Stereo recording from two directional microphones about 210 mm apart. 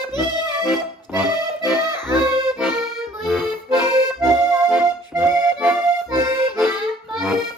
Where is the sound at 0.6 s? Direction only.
Centre (ahead or behind).